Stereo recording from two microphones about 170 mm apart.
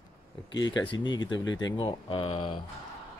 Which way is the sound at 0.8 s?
25° left (ahead or behind).